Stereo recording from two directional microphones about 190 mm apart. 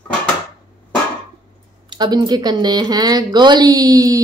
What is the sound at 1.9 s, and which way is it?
Speech, 25° right (ahead or behind).